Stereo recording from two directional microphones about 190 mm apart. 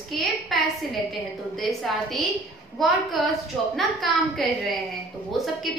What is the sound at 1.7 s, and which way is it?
A woman's voice, centre (ahead or behind).